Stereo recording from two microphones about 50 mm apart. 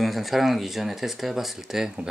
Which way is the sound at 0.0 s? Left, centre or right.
Centre.